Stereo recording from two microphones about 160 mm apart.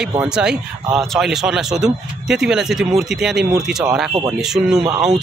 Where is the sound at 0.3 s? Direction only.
5° right (ahead or behind).